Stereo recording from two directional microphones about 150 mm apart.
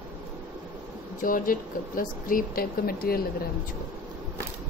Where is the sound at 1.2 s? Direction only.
65° left (ahead or behind).